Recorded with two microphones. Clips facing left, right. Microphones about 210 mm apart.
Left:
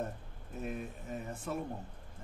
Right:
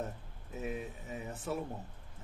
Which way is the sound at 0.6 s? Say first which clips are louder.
Right 1 dB; centre (ahead or behind).